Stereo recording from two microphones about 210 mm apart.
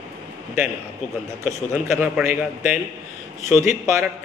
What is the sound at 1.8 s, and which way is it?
Speech, 5° right (ahead or behind).